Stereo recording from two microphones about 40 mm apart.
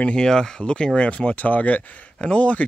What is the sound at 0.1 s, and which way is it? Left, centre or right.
Speech, centre.